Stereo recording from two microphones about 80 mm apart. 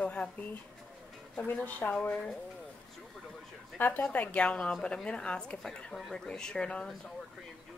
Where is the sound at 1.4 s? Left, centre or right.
Left.